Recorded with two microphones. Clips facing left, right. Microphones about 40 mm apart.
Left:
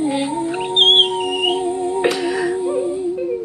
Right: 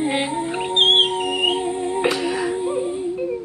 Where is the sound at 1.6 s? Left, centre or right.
Right.